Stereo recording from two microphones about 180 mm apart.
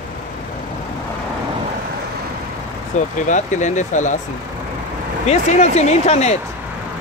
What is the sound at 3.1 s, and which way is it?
Speech, 45° left (ahead or behind).